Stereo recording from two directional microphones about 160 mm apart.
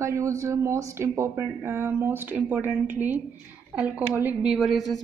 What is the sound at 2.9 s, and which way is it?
Speech, 50° right (ahead or behind).